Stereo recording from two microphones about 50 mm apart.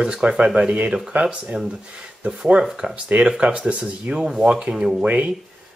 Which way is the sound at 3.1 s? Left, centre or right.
Right.